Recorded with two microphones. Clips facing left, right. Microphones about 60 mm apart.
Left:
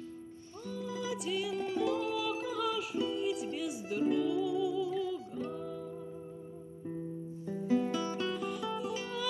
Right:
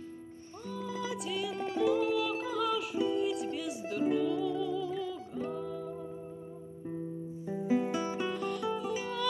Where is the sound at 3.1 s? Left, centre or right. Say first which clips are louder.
Right 3 dB; centre.